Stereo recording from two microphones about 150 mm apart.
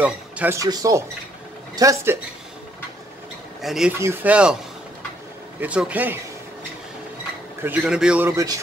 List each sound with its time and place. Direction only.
0.0 s speech: 10° right (ahead or behind)
0.6 s speech: 20° right (ahead or behind)
3.6 s a man's voice: 5° right (ahead or behind)
5.6 s a man's voice: 10° right (ahead or behind)
7.6 s a man's voice: 5° right (ahead or behind)